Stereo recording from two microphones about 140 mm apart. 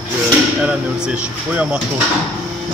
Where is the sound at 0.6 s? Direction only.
5° right (ahead or behind).